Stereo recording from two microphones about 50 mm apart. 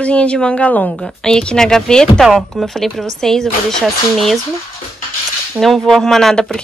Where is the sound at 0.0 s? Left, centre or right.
Left.